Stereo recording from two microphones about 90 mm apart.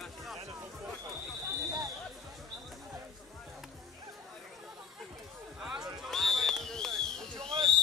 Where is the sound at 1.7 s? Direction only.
40° right (ahead or behind).